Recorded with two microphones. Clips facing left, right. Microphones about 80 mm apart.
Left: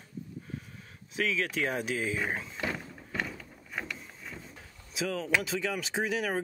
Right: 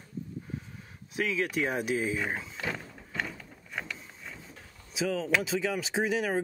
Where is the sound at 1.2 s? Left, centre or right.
Centre.